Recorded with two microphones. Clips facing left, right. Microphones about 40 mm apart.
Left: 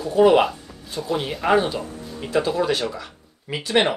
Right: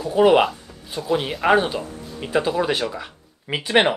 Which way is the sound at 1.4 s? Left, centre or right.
Right.